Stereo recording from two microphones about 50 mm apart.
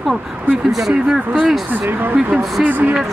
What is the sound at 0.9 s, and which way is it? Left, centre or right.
Speech, centre.